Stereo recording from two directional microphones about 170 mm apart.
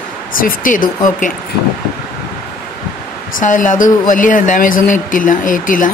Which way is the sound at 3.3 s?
50° left (ahead or behind).